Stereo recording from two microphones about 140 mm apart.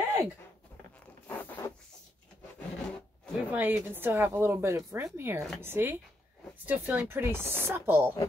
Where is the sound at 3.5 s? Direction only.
15° right (ahead or behind).